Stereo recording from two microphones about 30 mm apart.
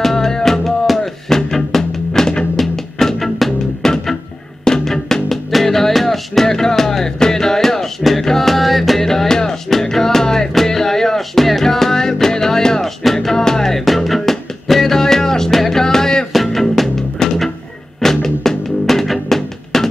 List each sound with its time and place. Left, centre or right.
0.0 s music: centre
8.0 s music: centre
9.0 s music: centre
13.8 s music: centre
16.4 s music: centre
17.2 s music: centre